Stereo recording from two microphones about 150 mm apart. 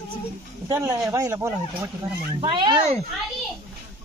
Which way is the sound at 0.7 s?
20° right (ahead or behind).